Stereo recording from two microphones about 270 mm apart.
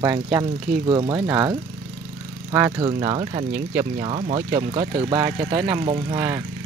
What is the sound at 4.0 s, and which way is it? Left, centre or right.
Speech, right.